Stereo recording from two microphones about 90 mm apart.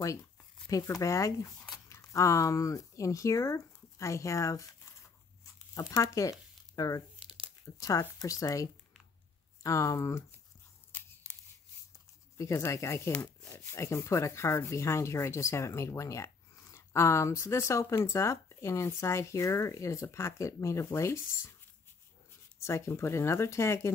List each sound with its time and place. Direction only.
0.0 s speech: 40° left (ahead or behind)
6.7 s crumpling: 45° left (ahead or behind)
7.2 s crumpling: 10° right (ahead or behind)
7.8 s sanding: 40° left (ahead or behind)
10.9 s scissors: 20° left (ahead or behind)
12.4 s sanding: 35° left (ahead or behind)
22.6 s sanding: 30° left (ahead or behind)